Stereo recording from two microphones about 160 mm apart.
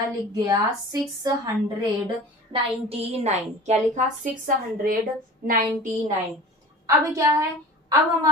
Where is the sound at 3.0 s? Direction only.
45° right (ahead or behind).